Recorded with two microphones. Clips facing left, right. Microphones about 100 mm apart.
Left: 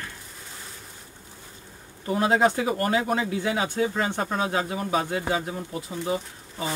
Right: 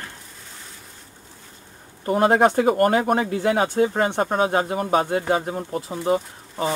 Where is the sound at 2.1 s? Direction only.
50° right (ahead or behind).